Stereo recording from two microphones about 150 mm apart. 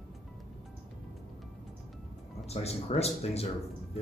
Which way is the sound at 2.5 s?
45° left (ahead or behind).